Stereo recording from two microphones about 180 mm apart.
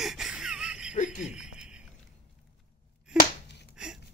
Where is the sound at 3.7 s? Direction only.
5° right (ahead or behind).